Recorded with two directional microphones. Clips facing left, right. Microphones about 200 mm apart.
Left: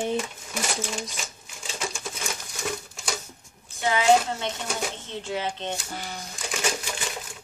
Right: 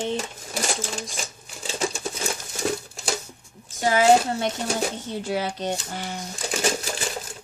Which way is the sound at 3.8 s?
40° right (ahead or behind).